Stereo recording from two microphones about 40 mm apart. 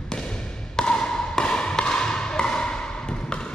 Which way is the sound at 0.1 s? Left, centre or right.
Left.